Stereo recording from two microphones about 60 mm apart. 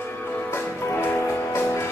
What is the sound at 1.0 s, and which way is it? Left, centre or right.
Music, left.